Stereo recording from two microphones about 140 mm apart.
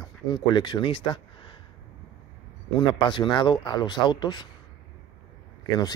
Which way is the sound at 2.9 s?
35° left (ahead or behind).